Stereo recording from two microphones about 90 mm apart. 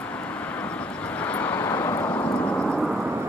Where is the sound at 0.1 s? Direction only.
15° left (ahead or behind).